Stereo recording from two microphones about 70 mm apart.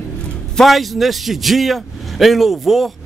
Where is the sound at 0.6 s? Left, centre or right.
Centre.